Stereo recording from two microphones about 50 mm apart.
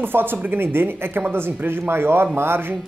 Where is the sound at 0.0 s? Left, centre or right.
Right.